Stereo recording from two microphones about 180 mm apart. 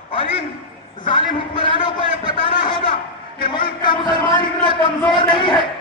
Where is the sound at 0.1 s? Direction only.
30° left (ahead or behind).